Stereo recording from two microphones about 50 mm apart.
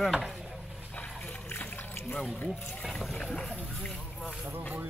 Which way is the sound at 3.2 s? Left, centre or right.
Left.